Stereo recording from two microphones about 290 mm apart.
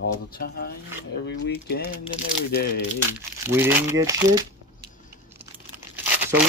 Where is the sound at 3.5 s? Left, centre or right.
Centre.